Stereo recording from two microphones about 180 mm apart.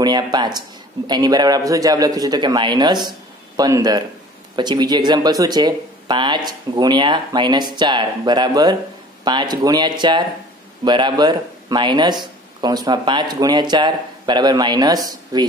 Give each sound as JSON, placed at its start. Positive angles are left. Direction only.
{"t": 0.0, "sound": "speech", "side_deg": -25}